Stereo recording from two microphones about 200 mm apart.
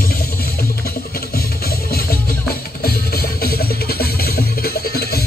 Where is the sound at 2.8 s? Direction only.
50° left (ahead or behind).